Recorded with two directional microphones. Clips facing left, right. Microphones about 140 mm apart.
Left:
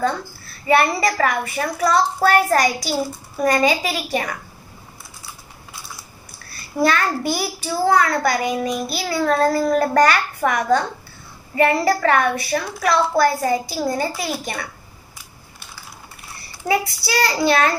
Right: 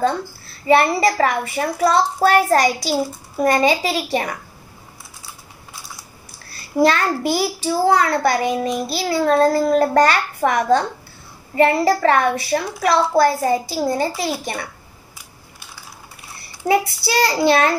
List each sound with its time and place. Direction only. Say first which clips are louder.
0.7 s a child's voice: right 2 dB; 25° right (ahead or behind)
6.8 s a child's voice: right 3 dB; 25° right (ahead or behind)
16.6 s a child's voice: right 3 dB; 20° right (ahead or behind)